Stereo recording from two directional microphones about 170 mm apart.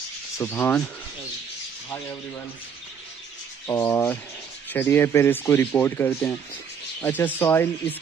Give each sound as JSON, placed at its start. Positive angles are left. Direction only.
{"t": 0.4, "sound": "a man's voice", "side_deg": 10}
{"t": 3.6, "sound": "a man's voice", "side_deg": 15}